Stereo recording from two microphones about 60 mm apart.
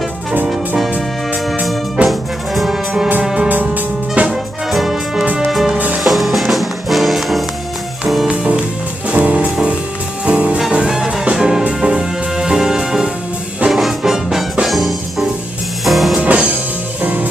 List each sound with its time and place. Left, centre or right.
0.5 s music: centre
2.0 s music: centre
3.7 s music: right
4.3 s music: centre
9.1 s music: right; by 16.2 s centre
16.2 s music: right